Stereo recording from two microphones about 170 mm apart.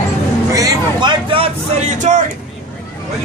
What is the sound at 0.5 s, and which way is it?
Speech, 25° right (ahead or behind).